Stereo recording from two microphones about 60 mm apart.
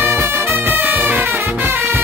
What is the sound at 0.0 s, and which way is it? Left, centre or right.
Music, right.